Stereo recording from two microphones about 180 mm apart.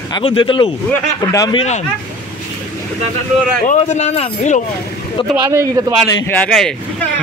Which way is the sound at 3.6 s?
40° left (ahead or behind).